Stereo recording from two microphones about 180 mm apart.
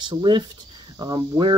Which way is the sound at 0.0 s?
25° right (ahead or behind).